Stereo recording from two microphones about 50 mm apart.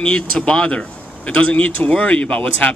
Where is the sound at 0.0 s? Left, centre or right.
Left.